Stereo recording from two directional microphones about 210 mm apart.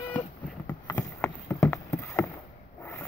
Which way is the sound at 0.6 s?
20° left (ahead or behind).